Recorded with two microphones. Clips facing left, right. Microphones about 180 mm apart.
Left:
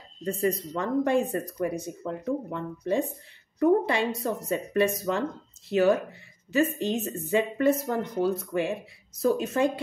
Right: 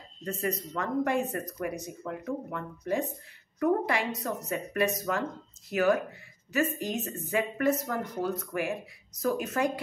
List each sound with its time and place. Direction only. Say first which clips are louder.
0.2 s speech: left 5 dB; 30° left (ahead or behind)